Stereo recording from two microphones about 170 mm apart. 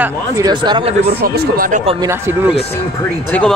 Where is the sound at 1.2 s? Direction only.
65° right (ahead or behind).